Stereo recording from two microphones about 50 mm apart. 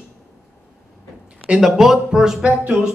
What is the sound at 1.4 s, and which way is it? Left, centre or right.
Speech, centre.